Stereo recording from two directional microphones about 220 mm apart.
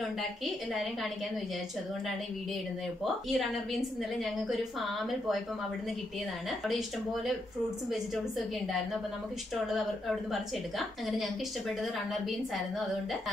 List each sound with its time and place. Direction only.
3.0 s a woman's voice: centre (ahead or behind)
9.7 s a woman's voice: centre (ahead or behind)